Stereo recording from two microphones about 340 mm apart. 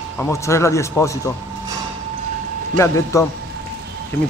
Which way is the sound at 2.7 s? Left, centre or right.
Centre.